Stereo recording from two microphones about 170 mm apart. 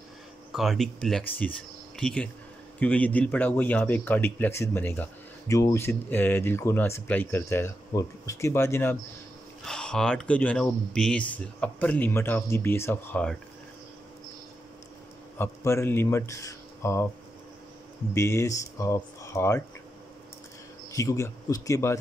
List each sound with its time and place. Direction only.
0.5 s speech: centre (ahead or behind); by 8.9 s 15° left (ahead or behind)
9.7 s speech: 5° left (ahead or behind)
15.3 s a man's voice: 15° left (ahead or behind)
18.1 s speech: 15° left (ahead or behind)
20.9 s speech: 20° left (ahead or behind)